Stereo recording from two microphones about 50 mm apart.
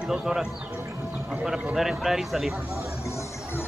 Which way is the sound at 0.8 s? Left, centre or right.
Right.